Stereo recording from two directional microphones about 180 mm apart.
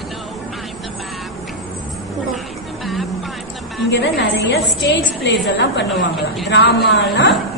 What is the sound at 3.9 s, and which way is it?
A woman's voice, 75° left (ahead or behind).